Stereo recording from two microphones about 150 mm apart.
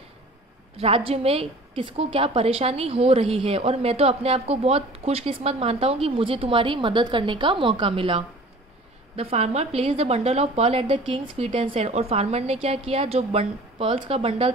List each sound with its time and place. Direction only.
0.7 s a woman's voice: 40° right (ahead or behind)